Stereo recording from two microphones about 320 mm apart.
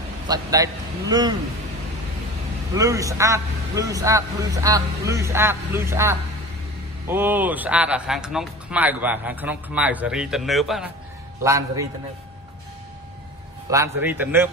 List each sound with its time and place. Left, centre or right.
0.3 s a man's voice: centre
2.7 s a man's voice: centre
13.7 s a man's voice: centre